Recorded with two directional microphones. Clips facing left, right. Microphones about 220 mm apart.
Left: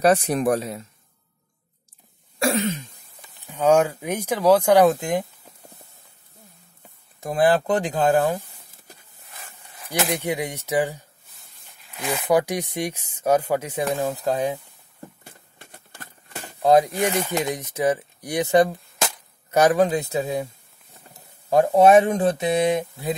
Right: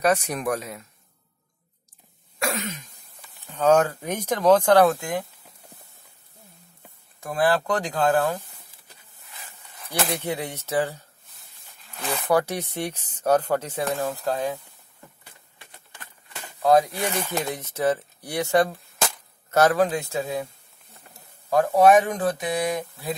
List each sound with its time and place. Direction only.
0.0 s speech: 30° left (ahead or behind)
2.3 s cough: 30° left (ahead or behind)
3.2 s speech: 10° left (ahead or behind)
7.2 s speech: 20° left (ahead or behind)
9.9 s speech: 15° left (ahead or behind)
15.2 s a sound: 45° left (ahead or behind)
16.6 s speech: 20° left (ahead or behind)
21.5 s speech: 25° left (ahead or behind)